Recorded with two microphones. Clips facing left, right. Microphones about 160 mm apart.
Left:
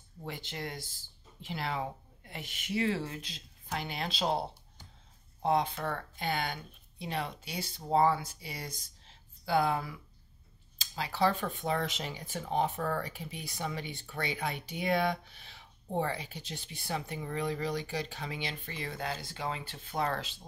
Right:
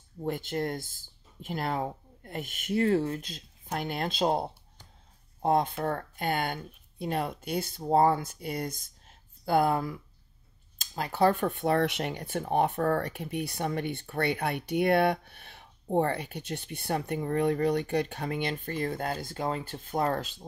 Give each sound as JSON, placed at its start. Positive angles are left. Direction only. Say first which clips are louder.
{"t": 0.2, "sound": "speech", "louder": "right 9 dB", "side_deg": -50}